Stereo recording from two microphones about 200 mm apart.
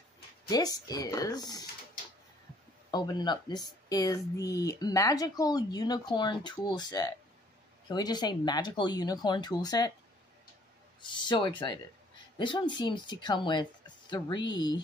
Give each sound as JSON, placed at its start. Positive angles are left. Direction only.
{"t": 0.5, "sound": "speech", "side_deg": 20}
{"t": 2.9, "sound": "speech", "side_deg": 20}
{"t": 11.0, "sound": "speech", "side_deg": 25}